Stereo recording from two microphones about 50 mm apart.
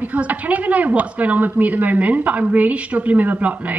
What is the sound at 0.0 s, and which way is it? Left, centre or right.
A woman's voice, right.